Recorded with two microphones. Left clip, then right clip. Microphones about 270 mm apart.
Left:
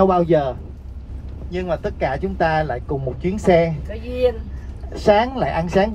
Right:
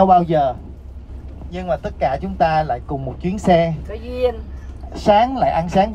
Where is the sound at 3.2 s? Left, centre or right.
Centre.